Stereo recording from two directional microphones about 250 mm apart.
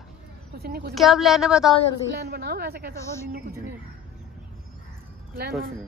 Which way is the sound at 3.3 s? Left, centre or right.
Right.